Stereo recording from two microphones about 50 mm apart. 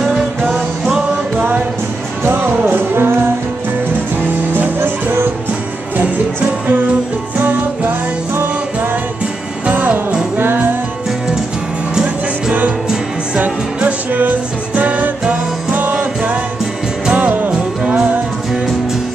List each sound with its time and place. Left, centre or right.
0.6 s music: centre
2.2 s music: right
5.9 s music: right
9.7 s music: right
13.4 s music: right
17.5 s music: centre